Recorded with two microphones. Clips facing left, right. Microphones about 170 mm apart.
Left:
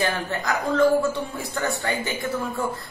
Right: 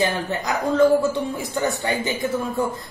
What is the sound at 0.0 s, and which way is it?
A woman's voice, 20° right (ahead or behind).